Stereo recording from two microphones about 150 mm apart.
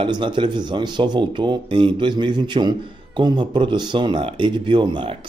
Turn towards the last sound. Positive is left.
turn(degrees=-35)  # may be behind; listen again after turning